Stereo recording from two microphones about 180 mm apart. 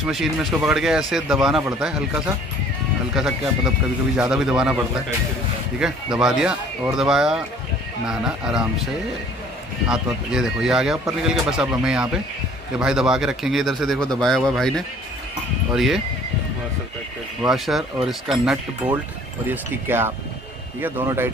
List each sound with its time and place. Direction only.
0.0 s speech: centre (ahead or behind)
4.2 s speech: 5° right (ahead or behind)
5.8 s speech: 5° right (ahead or behind)
9.8 s speech: 5° right (ahead or behind)
17.4 s speech: centre (ahead or behind)